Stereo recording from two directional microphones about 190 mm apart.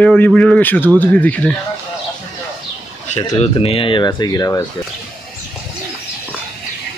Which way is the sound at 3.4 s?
30° left (ahead or behind).